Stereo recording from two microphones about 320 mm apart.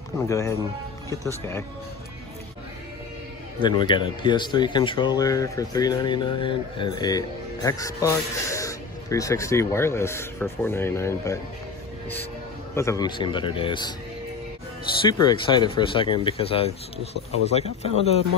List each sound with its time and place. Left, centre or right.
0.3 s speech: centre
3.5 s speech: centre
12.7 s speech: centre
15.0 s speech: centre